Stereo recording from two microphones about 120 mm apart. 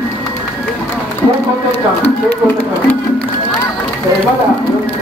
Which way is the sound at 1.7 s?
15° left (ahead or behind).